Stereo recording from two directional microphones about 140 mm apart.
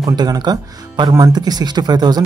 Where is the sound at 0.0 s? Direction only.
30° right (ahead or behind).